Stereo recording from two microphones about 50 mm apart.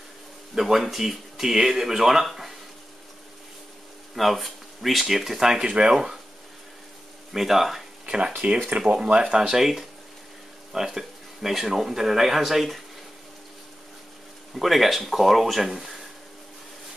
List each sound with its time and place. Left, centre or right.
0.6 s speech: centre
4.1 s speech: centre
7.3 s speech: centre
8.0 s a sound: centre
8.7 s speech: centre
14.5 s speech: centre